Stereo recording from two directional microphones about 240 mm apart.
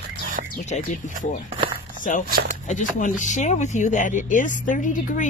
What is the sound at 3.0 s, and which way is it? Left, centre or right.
A woman's voice, left.